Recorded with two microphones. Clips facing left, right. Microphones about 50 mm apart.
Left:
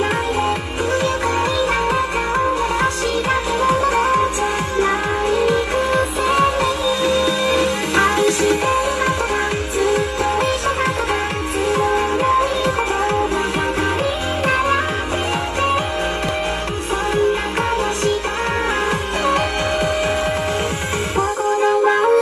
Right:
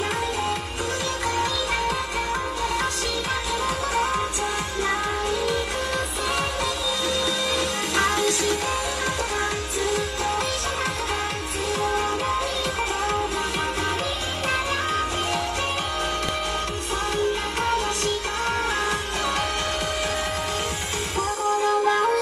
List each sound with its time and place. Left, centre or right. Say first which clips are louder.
1.4 s music: left 7 dB; left
11.7 s music: left 6 dB; left
21.2 s music: left 5 dB; left